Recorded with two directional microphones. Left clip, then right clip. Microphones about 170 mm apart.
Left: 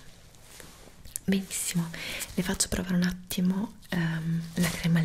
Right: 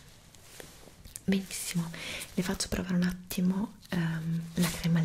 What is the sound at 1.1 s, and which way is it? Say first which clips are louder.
Speech: left 2 dB; centre (ahead or behind).